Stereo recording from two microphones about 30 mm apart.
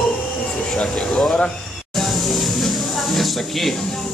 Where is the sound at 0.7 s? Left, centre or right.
Left.